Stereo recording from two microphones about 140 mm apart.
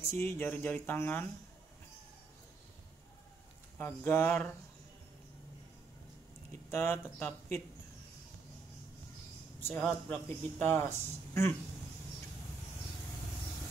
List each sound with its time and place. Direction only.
0.0 s speech: 20° left (ahead or behind)
3.7 s speech: 15° left (ahead or behind)
6.7 s speech: 15° left (ahead or behind)
9.6 s speech: 15° left (ahead or behind)